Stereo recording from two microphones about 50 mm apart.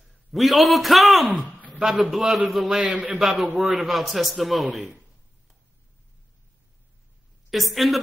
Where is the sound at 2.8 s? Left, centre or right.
Right.